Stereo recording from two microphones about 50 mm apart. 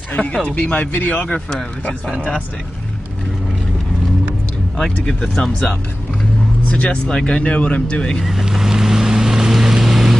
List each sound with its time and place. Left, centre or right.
0.1 s speech: left
5.0 s speech: centre
6.6 s speech: left
8.2 s boat: centre